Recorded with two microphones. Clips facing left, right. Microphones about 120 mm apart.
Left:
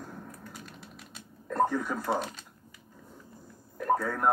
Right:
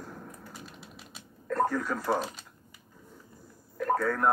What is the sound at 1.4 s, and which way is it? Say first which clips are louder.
Radio: even; 20° left (ahead or behind).